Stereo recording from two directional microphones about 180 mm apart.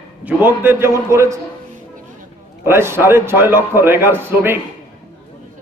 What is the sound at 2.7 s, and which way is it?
A man's voice, 15° right (ahead or behind).